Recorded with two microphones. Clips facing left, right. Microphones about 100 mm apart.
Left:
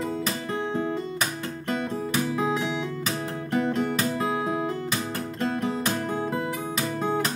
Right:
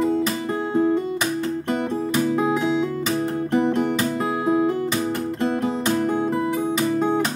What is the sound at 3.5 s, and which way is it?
Music, 20° right (ahead or behind).